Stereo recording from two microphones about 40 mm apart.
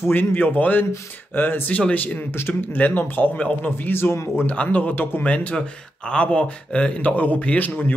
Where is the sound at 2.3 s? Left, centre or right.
Left.